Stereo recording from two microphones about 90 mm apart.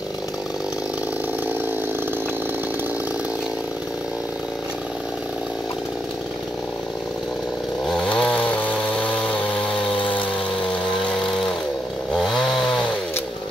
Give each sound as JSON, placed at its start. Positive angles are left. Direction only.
{"t": 8.0, "sound": "chainsaw", "side_deg": 15}
{"t": 12.1, "sound": "chainsaw", "side_deg": 0}